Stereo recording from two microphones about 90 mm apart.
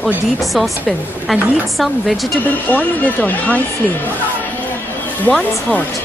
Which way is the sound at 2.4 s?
20° left (ahead or behind).